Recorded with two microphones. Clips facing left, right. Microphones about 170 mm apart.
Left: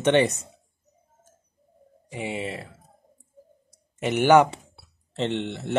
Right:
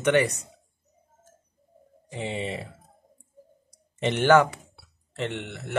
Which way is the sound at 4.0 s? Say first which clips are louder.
Left 2 dB; 10° left (ahead or behind).